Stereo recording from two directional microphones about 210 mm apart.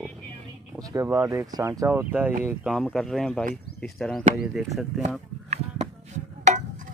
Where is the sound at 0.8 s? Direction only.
15° right (ahead or behind).